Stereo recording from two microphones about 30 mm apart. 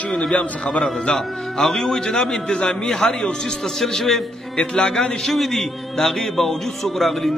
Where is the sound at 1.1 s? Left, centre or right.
Left.